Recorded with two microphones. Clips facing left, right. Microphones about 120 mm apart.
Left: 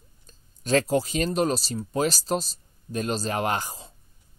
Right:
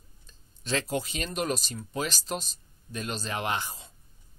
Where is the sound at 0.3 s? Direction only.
45° left (ahead or behind).